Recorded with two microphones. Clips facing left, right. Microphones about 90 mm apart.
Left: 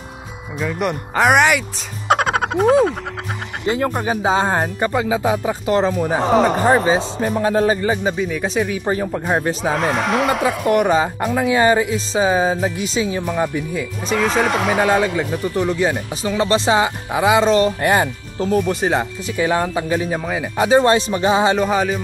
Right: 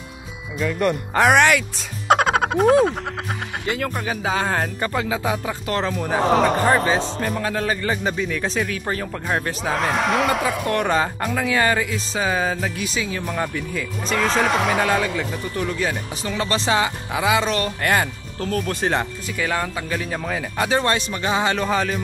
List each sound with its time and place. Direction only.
0.6 s a man's voice: 10° left (ahead or behind)
2.0 s frog: centre (ahead or behind)
3.6 s a man's voice: 25° left (ahead or behind)
6.1 s a man's voice: centre (ahead or behind)
7.3 s a man's voice: 25° left (ahead or behind)
9.7 s speech: centre (ahead or behind)
10.8 s speech: 15° left (ahead or behind)
13.4 s a man's voice: 15° left (ahead or behind)
14.1 s speech: 5° left (ahead or behind)
15.3 s a man's voice: 25° left (ahead or behind)